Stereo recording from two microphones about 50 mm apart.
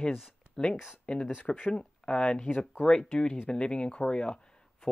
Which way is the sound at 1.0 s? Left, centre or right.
Centre.